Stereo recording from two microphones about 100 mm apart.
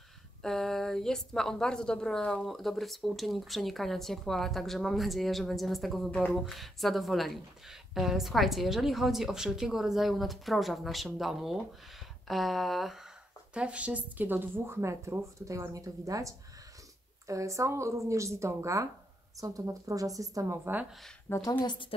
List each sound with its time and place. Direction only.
0.4 s a woman's voice: 5° left (ahead or behind); by 20.7 s 30° right (ahead or behind)
21.5 s a woman's voice: 50° left (ahead or behind)